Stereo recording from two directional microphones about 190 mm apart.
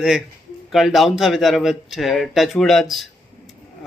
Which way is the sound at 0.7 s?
Centre (ahead or behind).